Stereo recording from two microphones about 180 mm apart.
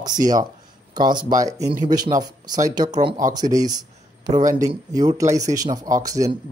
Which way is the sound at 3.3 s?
20° right (ahead or behind).